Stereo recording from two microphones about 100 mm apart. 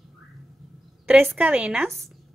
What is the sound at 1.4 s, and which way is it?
Speech, 15° right (ahead or behind).